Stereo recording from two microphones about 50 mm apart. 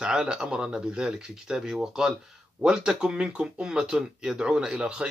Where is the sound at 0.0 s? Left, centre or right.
Centre.